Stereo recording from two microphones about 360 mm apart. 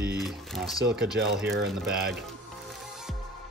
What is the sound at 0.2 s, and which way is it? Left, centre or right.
Speech, centre.